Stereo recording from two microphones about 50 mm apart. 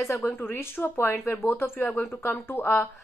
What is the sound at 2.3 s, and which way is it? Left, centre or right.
Speech, left.